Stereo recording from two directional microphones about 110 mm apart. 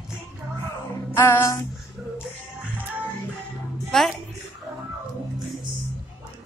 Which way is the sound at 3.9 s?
5° left (ahead or behind).